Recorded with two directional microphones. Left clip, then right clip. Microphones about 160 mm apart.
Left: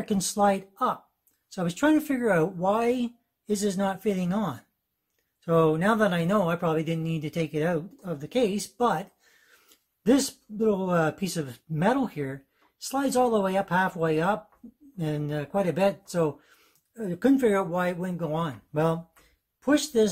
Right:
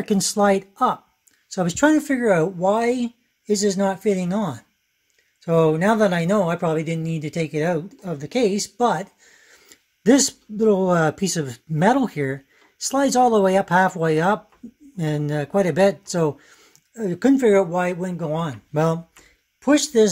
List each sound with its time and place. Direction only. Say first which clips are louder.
0.0 s speech: right 5 dB; 35° right (ahead or behind)